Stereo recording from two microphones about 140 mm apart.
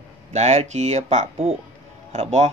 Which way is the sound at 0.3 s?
55° right (ahead or behind).